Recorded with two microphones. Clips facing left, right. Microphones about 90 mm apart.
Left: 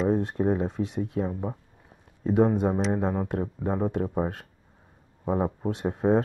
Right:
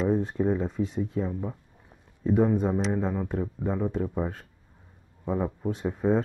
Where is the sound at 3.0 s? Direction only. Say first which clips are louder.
Left 2 dB; 45° left (ahead or behind).